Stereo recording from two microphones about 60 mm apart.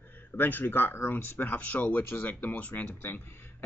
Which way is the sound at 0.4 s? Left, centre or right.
Left.